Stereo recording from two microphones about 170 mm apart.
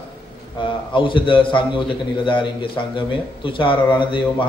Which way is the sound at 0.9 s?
30° left (ahead or behind).